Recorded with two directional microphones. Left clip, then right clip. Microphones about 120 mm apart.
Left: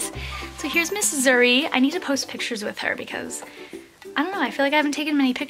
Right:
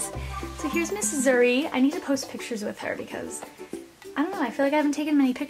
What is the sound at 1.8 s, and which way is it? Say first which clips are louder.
Speech: left 2 dB; 25° left (ahead or behind).